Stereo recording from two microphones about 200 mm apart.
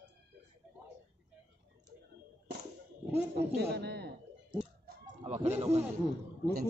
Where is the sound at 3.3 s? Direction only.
55° right (ahead or behind).